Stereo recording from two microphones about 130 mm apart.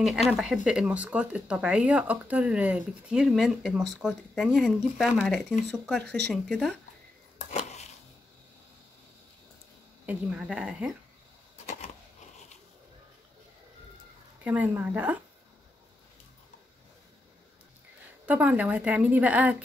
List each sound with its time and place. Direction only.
0.0 s speech: 5° right (ahead or behind)
7.3 s a sound: 60° left (ahead or behind)
10.0 s speech: 10° right (ahead or behind)
11.5 s a sound: 65° left (ahead or behind)
14.4 s speech: 10° right (ahead or behind)
18.2 s speech: 10° right (ahead or behind)